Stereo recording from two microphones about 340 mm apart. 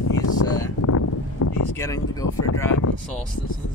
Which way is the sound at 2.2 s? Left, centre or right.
Left.